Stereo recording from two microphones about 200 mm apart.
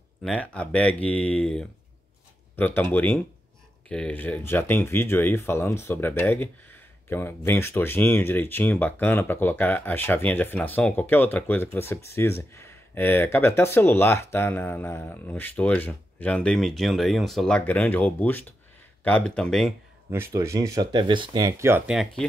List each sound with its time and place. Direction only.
0.2 s speech: 5° left (ahead or behind)
20.1 s speech: 10° right (ahead or behind)